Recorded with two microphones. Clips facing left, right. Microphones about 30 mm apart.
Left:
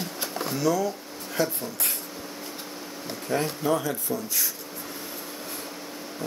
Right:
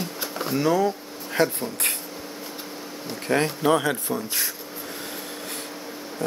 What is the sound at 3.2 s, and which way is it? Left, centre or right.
Speech, right.